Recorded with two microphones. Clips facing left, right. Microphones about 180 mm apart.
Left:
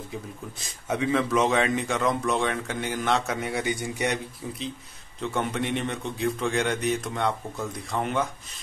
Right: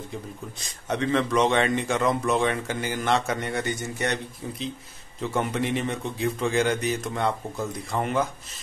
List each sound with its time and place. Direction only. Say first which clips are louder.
0.1 s a man's voice: even; 5° left (ahead or behind)
5.2 s a man's voice: right 2 dB; centre (ahead or behind)